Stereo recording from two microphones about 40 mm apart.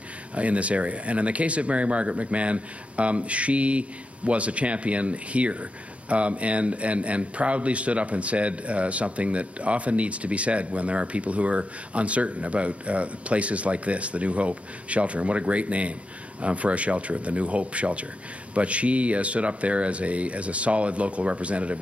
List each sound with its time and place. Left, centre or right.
0.3 s speech: right